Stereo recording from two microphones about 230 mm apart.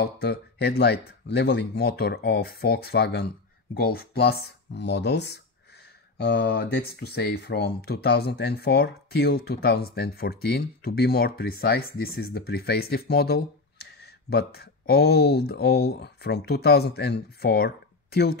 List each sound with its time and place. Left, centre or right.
0.0 s speech: left